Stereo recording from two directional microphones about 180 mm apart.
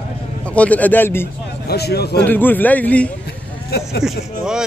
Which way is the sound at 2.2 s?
10° left (ahead or behind).